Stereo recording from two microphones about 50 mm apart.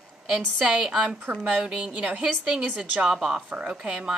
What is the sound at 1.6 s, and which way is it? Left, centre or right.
Speech, right.